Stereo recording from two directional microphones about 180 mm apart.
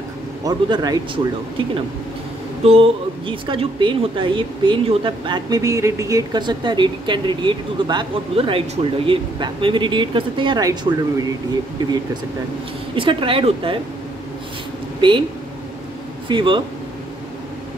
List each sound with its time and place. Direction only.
0.4 s a woman's voice: 20° right (ahead or behind)
2.6 s a woman's voice: 30° right (ahead or behind)
12.9 s a woman's voice: 30° right (ahead or behind)
15.0 s speech: 25° right (ahead or behind)
16.3 s a woman's voice: 25° right (ahead or behind)